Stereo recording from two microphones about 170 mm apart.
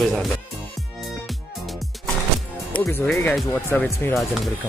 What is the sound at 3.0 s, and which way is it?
Speech, 5° left (ahead or behind).